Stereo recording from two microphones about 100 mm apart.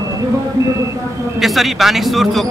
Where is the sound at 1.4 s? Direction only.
Centre (ahead or behind).